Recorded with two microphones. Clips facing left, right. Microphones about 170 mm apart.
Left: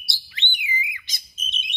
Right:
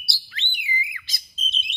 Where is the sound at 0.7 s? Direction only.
20° left (ahead or behind).